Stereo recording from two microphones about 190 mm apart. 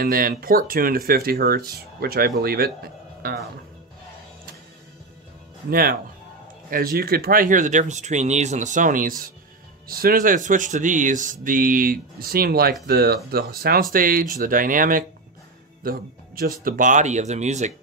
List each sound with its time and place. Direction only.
0.0 s speech: 50° right (ahead or behind)
5.7 s speech: 50° right (ahead or behind)